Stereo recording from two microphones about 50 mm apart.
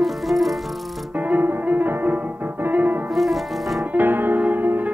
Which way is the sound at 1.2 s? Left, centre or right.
Right.